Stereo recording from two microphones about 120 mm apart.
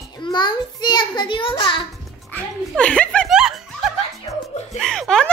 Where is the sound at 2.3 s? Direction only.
10° left (ahead or behind).